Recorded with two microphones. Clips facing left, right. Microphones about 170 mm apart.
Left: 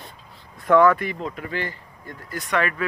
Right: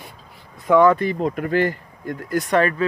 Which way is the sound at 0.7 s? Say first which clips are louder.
Right 2 dB; 20° right (ahead or behind).